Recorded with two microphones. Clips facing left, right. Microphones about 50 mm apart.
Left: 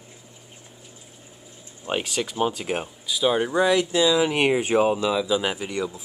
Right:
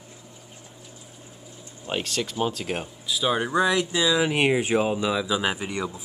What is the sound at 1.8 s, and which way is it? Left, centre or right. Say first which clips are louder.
Speech: left 2 dB; centre.